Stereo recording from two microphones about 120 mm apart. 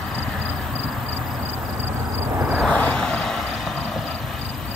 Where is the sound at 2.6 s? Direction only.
10° left (ahead or behind).